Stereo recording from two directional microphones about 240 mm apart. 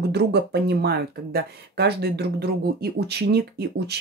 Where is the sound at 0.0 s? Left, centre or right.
Right.